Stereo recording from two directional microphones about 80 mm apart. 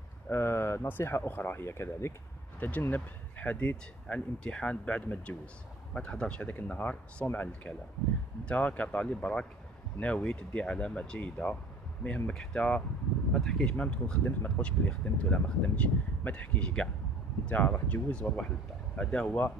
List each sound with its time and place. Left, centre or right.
0.3 s speech: left
2.6 s speech: left